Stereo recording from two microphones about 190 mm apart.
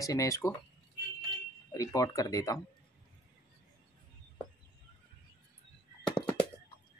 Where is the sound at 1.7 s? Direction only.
15° left (ahead or behind).